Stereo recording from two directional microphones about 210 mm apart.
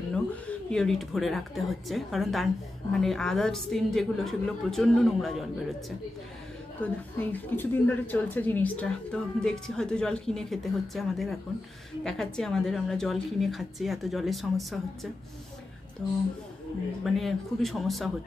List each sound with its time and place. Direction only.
0.1 s speech: 5° left (ahead or behind)
6.8 s speech: 10° left (ahead or behind)
17.0 s speech: centre (ahead or behind)